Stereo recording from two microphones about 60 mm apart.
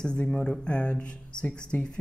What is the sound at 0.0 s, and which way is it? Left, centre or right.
Speech, centre.